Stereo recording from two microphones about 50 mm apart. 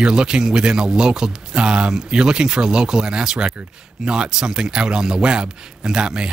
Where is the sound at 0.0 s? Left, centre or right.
Centre.